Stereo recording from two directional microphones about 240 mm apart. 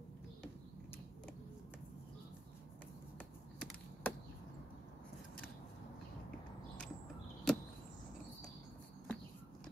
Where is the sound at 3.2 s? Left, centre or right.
Centre.